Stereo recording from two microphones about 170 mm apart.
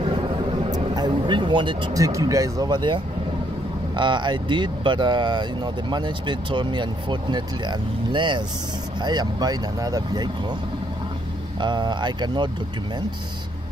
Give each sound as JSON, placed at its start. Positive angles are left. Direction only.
{"t": 0.7, "sound": "speech", "side_deg": -25}
{"t": 11.6, "sound": "speech", "side_deg": -25}